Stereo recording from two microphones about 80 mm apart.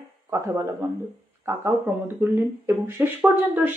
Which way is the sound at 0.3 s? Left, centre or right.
Right.